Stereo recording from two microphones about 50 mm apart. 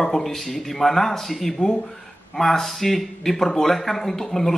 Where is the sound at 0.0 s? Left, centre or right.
Centre.